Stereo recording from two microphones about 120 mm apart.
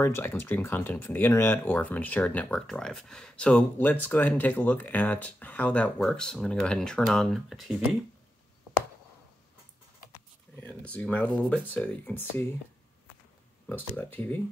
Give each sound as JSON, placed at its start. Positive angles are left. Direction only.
{"t": 0.0, "sound": "speech", "side_deg": 20}
{"t": 10.5, "sound": "a sound", "side_deg": 15}
{"t": 11.3, "sound": "speech", "side_deg": 5}
{"t": 13.7, "sound": "speech", "side_deg": 15}